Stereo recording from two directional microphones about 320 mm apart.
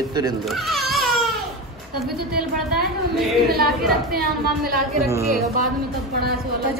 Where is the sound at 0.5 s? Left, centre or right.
Centre.